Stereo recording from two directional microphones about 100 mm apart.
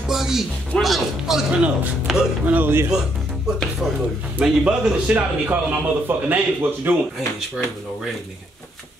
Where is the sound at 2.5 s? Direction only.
20° right (ahead or behind).